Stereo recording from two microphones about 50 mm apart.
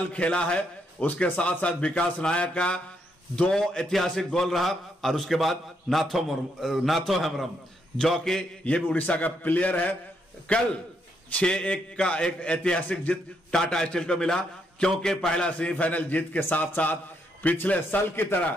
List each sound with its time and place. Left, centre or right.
0.1 s speech: left
1.0 s a man's voice: left; by 7.4 s centre
8.2 s a man's voice: centre
8.8 s a man's voice: left; by 15.5 s centre
15.5 s a man's voice: left